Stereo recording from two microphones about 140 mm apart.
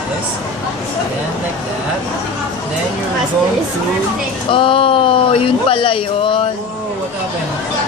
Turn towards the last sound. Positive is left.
turn(degrees=40)  # may be behind; listen again after turning